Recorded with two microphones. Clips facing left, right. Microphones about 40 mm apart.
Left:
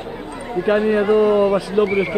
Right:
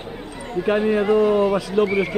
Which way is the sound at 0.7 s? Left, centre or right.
Centre.